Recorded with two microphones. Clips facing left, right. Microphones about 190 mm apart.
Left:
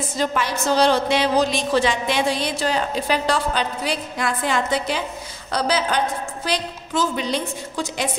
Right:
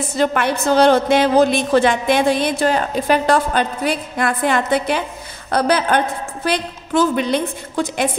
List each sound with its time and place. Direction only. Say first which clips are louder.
0.2 s a woman's voice: right 5 dB; 60° right (ahead or behind)